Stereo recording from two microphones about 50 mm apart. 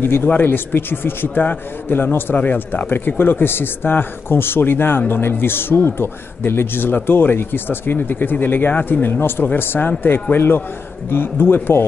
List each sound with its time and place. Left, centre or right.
0.0 s a man's voice: left